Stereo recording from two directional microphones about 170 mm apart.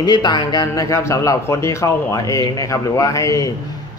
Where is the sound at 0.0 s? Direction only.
25° left (ahead or behind).